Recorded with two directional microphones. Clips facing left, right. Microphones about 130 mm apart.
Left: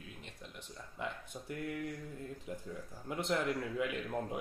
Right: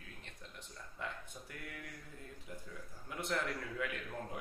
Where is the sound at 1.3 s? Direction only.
35° left (ahead or behind).